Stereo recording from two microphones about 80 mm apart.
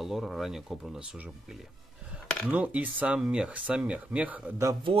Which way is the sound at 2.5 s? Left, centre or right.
Centre.